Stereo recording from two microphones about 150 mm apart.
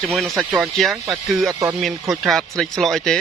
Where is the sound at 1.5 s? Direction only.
20° right (ahead or behind).